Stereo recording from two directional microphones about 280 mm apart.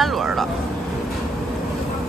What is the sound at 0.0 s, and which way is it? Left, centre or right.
Vehicle, centre.